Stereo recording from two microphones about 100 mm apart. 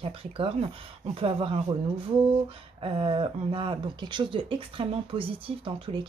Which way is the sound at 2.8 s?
65° right (ahead or behind).